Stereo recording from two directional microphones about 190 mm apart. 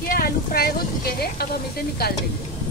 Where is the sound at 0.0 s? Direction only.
50° left (ahead or behind).